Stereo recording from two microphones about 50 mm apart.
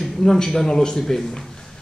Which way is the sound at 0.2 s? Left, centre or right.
Centre.